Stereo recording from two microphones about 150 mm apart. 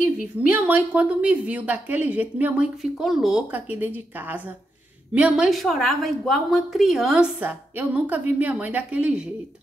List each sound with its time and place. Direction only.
0.0 s a woman's voice: 5° right (ahead or behind)